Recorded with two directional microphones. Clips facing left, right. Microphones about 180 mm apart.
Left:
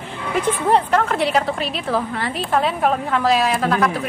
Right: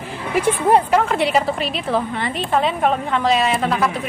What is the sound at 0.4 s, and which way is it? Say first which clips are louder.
A woman's voice: right 2 dB; 10° right (ahead or behind).